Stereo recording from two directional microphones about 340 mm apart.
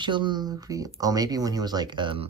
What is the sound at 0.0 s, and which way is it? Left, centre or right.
Speech, centre.